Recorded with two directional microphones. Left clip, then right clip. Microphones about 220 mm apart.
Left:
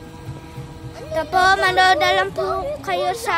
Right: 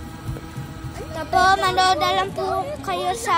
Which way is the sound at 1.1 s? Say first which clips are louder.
Left 1 dB; 25° left (ahead or behind).